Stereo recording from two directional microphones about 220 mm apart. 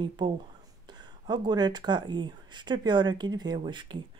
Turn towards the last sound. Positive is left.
turn(degrees=-20)  # may be behind; listen again after turning